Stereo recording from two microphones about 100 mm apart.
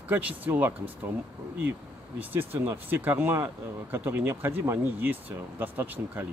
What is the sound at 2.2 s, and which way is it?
Speech, 20° right (ahead or behind).